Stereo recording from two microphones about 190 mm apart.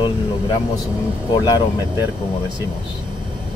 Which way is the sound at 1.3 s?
20° left (ahead or behind).